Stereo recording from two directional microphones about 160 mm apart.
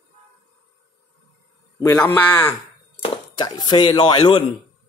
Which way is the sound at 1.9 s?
10° left (ahead or behind).